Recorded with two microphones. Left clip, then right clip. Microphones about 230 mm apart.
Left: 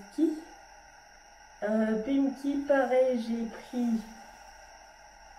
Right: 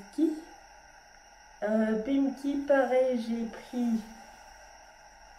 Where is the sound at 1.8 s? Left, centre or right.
Centre.